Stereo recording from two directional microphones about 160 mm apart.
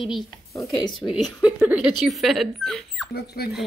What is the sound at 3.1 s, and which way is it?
Speech, 80° left.